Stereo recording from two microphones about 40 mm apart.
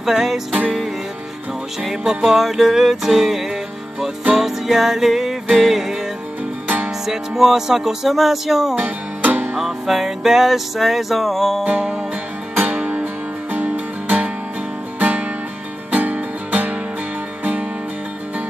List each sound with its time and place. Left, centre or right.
0.0 s music: centre
1.8 s music: centre
7.1 s music: centre
8.7 s music: right
9.6 s music: centre
12.5 s music: right